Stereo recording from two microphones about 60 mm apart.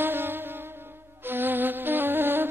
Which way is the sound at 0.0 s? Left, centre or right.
Right.